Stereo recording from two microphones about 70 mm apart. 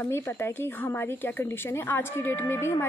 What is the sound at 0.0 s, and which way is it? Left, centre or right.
Speech, left.